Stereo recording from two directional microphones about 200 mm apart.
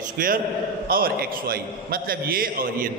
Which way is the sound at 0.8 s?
45° right (ahead or behind).